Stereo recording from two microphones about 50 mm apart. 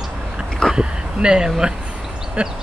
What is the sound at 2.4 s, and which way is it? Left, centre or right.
Speech, right.